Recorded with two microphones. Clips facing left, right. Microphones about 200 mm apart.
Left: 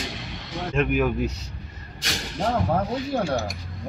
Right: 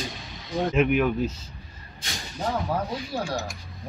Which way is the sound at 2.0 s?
80° left.